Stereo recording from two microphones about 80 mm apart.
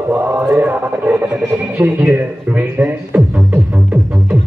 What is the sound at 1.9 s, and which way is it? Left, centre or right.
Speech, right.